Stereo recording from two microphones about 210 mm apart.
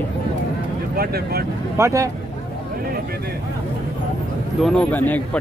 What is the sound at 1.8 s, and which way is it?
Speech, 15° right (ahead or behind).